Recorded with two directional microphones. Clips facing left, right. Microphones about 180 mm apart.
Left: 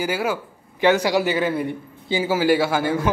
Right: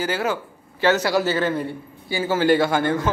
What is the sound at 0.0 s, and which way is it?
A man's voice, 10° left (ahead or behind).